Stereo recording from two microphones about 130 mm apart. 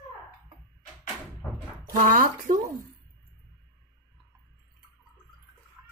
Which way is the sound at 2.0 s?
90° right.